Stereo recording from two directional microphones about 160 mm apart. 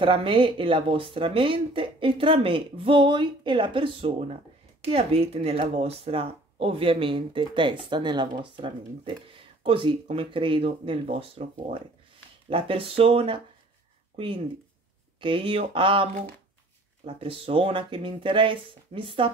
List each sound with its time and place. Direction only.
0.0 s speech: 35° right (ahead or behind)